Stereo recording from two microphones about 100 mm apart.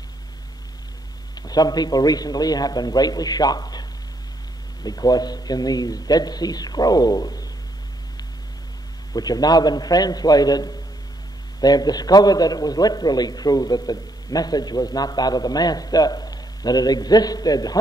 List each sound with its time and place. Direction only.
1.3 s a man's voice: 40° left (ahead or behind)
4.8 s a man's voice: 40° left (ahead or behind)
9.1 s a man's voice: 40° left (ahead or behind)